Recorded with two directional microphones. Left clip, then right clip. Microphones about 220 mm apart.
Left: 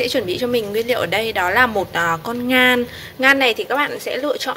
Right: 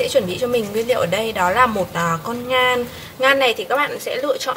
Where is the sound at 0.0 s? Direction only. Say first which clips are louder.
Right 1 dB; 35° left (ahead or behind).